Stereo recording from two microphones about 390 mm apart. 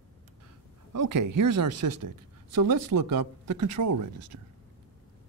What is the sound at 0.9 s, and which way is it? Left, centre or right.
Speech, right.